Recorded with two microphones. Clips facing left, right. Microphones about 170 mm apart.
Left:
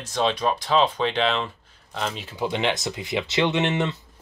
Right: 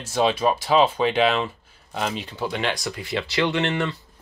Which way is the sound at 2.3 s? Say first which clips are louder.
Left 5 dB; 20° left (ahead or behind).